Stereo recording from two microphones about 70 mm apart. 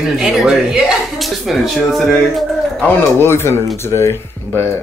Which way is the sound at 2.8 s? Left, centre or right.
Left.